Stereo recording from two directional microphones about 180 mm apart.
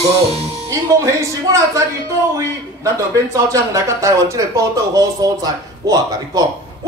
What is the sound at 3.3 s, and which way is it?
Speech, 20° right (ahead or behind).